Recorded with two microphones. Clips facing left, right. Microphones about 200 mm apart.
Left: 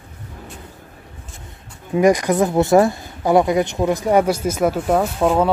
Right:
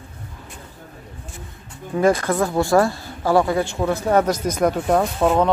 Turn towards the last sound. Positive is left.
turn(degrees=5)  # may be behind; listen again after turning